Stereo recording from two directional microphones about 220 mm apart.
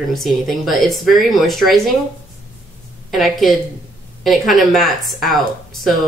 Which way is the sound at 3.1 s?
Centre (ahead or behind).